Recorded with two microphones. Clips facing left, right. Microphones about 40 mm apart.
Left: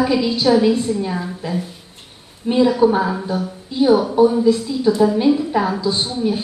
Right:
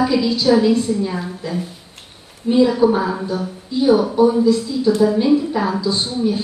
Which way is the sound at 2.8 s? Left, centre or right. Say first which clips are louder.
Even; centre.